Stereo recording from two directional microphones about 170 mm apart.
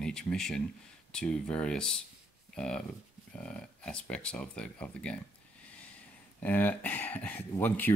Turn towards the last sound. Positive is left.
turn(degrees=10)  # may be behind; listen again after turning